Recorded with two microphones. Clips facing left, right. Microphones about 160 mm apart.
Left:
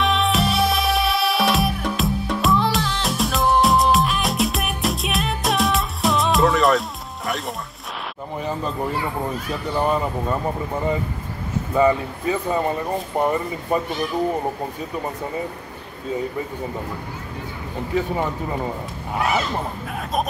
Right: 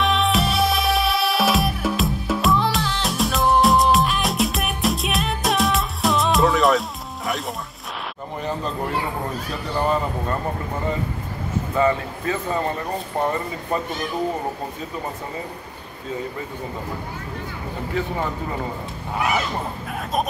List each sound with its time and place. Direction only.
0.0 s music: centre (ahead or behind)
8.4 s a sound: 5° left (ahead or behind)
9.8 s speech: 10° left (ahead or behind)
11.7 s speech: 15° left (ahead or behind)